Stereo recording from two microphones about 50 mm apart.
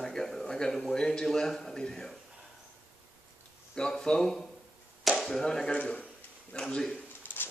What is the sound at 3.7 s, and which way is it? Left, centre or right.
A man's voice, centre.